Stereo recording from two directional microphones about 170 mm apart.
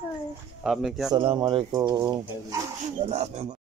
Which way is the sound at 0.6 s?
Centre (ahead or behind).